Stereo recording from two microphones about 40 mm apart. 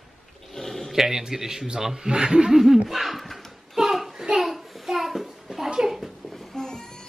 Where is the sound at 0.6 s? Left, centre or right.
Centre.